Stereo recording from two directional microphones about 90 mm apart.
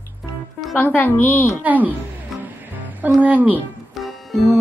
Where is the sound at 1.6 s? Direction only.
20° right (ahead or behind).